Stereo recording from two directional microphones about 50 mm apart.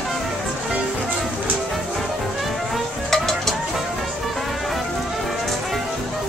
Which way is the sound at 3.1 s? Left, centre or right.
Centre.